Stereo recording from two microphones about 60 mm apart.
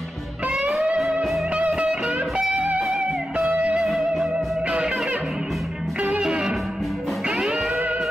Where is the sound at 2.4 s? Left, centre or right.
Centre.